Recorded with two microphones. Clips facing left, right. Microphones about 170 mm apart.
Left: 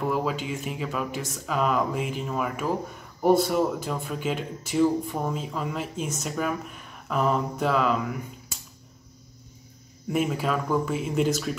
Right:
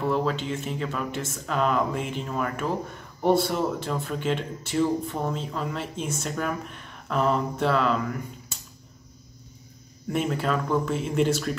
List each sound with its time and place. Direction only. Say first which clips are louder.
0.0 s speech: right 1 dB; 10° left (ahead or behind)
10.0 s speech: even; 5° left (ahead or behind)